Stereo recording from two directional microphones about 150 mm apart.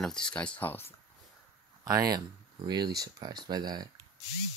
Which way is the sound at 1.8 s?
25° right (ahead or behind).